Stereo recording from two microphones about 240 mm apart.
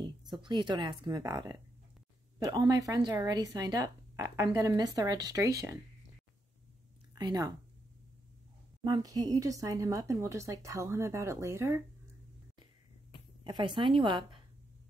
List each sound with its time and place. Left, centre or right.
0.0 s speech: centre
7.2 s speech: centre
8.8 s speech: centre
13.4 s a sound: centre
13.7 s a woman's voice: right